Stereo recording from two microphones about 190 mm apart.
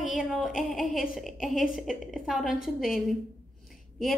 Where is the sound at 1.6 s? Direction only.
Centre (ahead or behind).